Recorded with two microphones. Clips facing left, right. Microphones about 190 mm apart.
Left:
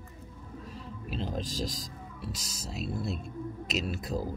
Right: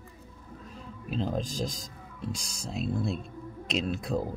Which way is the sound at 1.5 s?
40° left (ahead or behind).